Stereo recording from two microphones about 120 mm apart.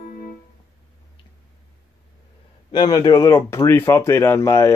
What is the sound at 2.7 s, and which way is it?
Speech, 35° left (ahead or behind).